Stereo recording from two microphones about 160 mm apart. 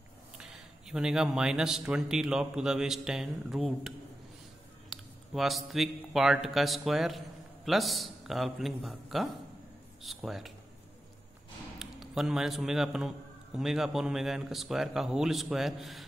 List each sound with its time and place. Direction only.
0.4 s a man's voice: 5° right (ahead or behind)
11.8 s a man's voice: centre (ahead or behind)